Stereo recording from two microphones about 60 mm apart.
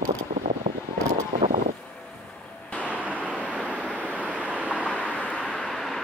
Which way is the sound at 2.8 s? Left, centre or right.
Right.